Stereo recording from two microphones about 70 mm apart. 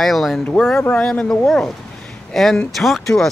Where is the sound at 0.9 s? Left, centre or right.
Centre.